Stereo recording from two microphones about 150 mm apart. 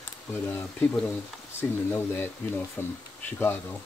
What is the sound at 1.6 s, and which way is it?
Speech, 20° left (ahead or behind).